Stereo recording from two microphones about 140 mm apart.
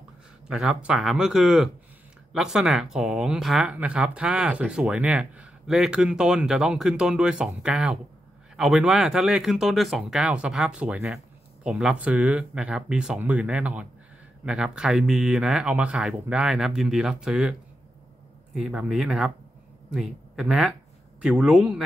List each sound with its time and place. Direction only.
0.5 s speech: 5° right (ahead or behind)